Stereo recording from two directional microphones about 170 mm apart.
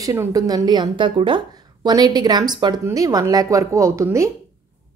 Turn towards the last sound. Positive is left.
turn(degrees=-15)  # may be behind; listen again after turning